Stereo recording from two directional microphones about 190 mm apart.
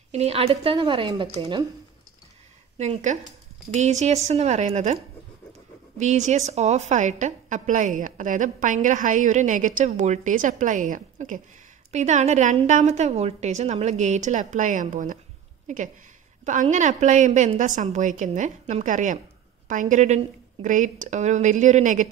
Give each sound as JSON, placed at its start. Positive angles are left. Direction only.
{"t": 0.1, "sound": "a woman's voice", "side_deg": -35}
{"t": 2.8, "sound": "a woman's voice", "side_deg": -35}
{"t": 5.9, "sound": "a woman's voice", "side_deg": -40}